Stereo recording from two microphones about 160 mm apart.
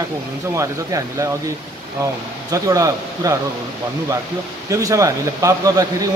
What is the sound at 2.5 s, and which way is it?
Speech, 20° right (ahead or behind).